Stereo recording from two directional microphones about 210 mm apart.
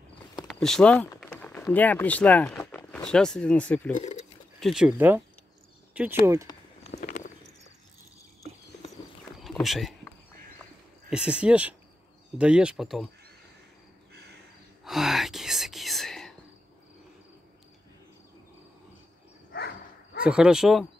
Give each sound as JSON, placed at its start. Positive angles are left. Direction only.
{"t": 0.5, "sound": "speech", "side_deg": 0}
{"t": 3.9, "sound": "speech", "side_deg": 30}
{"t": 4.6, "sound": "speech", "side_deg": 0}
{"t": 7.1, "sound": "horse", "side_deg": 35}
{"t": 9.4, "sound": "a sound", "side_deg": 0}
{"t": 11.1, "sound": "speech", "side_deg": -5}
{"t": 14.9, "sound": "whispering", "side_deg": 0}
{"t": 20.2, "sound": "speech", "side_deg": -5}